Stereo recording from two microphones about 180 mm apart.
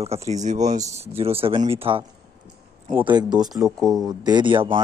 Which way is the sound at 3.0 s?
25° right (ahead or behind).